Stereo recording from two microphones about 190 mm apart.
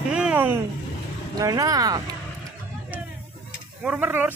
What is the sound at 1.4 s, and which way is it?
Speech, 20° right (ahead or behind).